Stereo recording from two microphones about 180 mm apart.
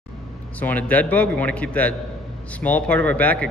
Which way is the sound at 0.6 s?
10° left (ahead or behind).